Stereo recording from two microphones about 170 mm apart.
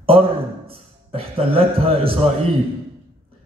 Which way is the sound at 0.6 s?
35° right (ahead or behind).